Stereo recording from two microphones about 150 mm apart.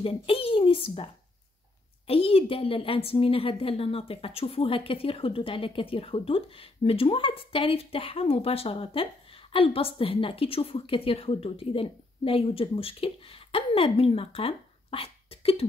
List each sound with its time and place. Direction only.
0.0 s a woman's voice: 40° left (ahead or behind)